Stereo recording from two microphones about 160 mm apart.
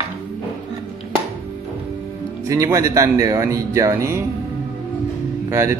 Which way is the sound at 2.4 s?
20° right (ahead or behind).